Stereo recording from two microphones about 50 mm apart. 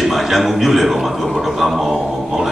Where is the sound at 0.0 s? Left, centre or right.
Centre.